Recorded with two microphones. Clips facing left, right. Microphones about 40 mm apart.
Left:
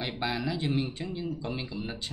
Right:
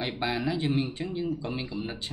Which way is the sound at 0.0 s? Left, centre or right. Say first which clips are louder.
Right 2 dB; centre.